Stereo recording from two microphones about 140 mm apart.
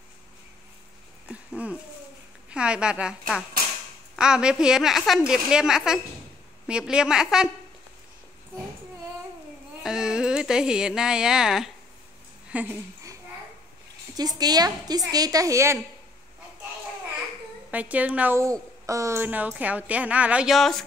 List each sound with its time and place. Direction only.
1.3 s a woman's voice: 10° right (ahead or behind)
9.8 s speech: 5° right (ahead or behind)
12.4 s a sound: 10° right (ahead or behind)
14.1 s a woman's voice: 30° right (ahead or behind)
17.6 s a woman's voice: 10° right (ahead or behind)